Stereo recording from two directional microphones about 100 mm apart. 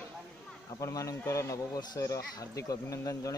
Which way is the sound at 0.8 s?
35° left (ahead or behind).